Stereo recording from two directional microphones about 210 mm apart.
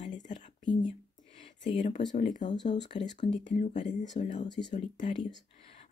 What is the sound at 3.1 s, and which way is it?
Speech, 35° left (ahead or behind).